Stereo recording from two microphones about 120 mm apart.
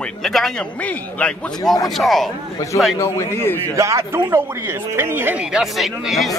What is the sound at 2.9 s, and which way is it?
Speech, 20° left (ahead or behind).